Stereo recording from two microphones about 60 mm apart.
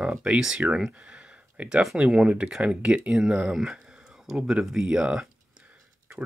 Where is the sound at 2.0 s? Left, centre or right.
Centre.